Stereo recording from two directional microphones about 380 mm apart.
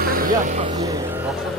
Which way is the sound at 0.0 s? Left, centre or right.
Right.